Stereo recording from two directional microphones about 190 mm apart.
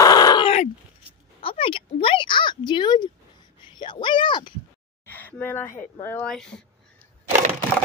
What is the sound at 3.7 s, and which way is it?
Speech, 25° left (ahead or behind).